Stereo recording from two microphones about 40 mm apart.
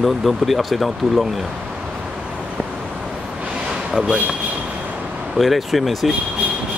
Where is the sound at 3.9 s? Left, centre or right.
Right.